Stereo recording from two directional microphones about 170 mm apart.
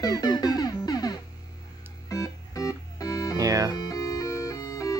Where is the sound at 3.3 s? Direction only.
20° right (ahead or behind).